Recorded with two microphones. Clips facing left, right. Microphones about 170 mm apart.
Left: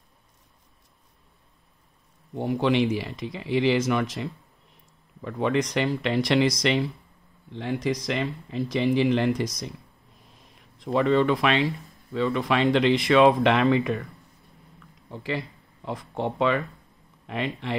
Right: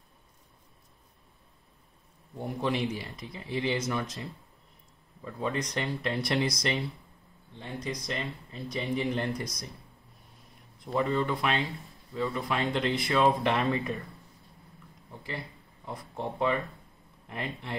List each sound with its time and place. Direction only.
2.3 s speech: 85° left
15.0 s speech: 90° left